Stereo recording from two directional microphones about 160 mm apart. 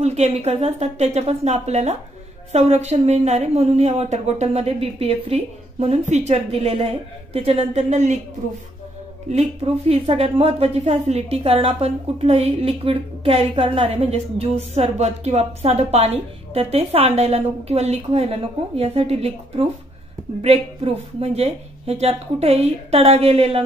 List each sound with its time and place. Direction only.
0.0 s a woman's voice: 40° right (ahead or behind)
9.3 s a woman's voice: 40° right (ahead or behind)